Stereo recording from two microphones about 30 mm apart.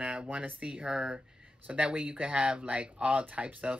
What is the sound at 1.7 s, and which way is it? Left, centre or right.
Speech, right.